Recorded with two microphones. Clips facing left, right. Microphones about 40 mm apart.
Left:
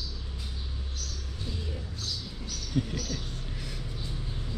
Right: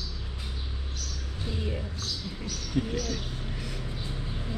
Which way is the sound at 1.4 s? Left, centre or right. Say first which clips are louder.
Right 5 dB; right.